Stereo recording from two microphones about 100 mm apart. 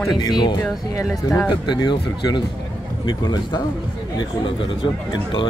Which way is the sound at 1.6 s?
50° left (ahead or behind).